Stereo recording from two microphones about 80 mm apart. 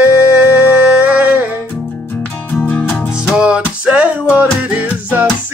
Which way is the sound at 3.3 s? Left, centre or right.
Centre.